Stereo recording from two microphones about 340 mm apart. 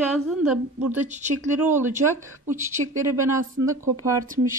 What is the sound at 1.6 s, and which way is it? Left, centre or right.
Speech, centre.